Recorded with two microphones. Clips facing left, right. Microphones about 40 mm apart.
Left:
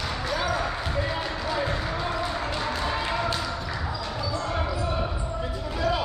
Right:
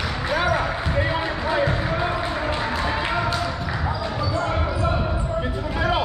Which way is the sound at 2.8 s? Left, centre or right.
Right.